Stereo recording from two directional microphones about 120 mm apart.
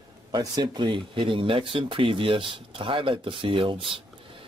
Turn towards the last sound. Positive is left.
turn(degrees=-45)  # may be behind; listen again after turning